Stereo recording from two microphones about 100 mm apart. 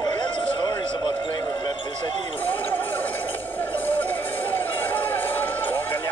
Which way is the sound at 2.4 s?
20° left (ahead or behind).